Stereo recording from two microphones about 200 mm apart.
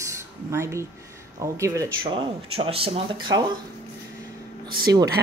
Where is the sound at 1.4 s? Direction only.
15° right (ahead or behind).